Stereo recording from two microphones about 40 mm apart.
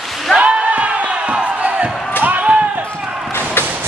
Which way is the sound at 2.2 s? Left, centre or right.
Right.